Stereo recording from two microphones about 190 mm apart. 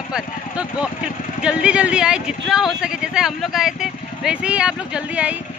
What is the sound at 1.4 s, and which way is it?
Speech, 5° right (ahead or behind).